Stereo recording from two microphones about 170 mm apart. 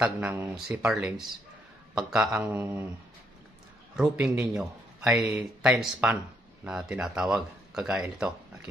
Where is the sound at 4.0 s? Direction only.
5° right (ahead or behind).